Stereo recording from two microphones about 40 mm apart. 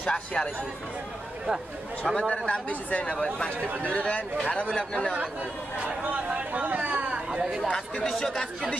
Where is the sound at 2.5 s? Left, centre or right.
Left.